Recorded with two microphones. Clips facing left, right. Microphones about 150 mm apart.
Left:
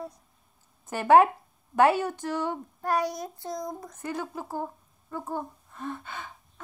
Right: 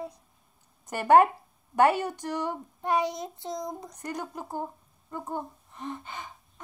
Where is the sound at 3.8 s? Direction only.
15° right (ahead or behind).